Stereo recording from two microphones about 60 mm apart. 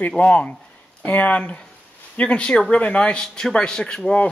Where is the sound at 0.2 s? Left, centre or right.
Left.